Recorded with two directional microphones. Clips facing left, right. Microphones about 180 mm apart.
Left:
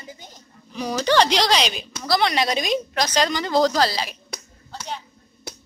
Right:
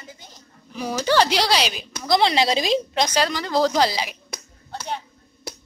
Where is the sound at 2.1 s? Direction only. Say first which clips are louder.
Right 2 dB; 25° right (ahead or behind).